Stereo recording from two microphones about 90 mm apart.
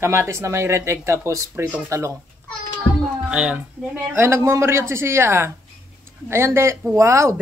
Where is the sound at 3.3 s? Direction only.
15° right (ahead or behind).